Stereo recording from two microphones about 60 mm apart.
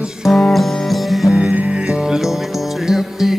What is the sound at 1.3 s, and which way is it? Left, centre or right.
Music, right.